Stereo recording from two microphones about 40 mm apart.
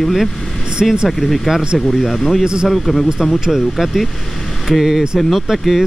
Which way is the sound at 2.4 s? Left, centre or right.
Right.